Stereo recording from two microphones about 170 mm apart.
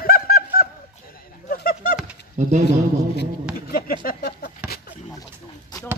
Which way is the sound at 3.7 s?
60° left (ahead or behind).